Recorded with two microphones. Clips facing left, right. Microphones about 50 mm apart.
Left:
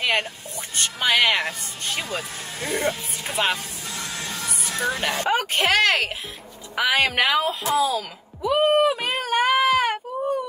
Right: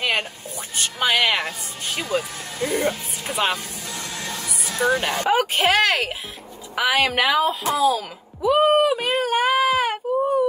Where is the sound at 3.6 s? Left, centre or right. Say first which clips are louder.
Right 1 dB; left.